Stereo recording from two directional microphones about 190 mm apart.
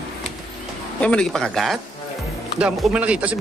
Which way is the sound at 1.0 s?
5° left (ahead or behind).